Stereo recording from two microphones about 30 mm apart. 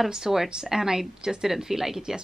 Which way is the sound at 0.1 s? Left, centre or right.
Centre.